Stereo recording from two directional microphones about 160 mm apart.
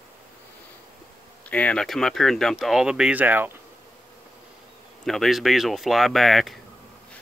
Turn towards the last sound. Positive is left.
turn(degrees=0)  # may be behind; listen again after turning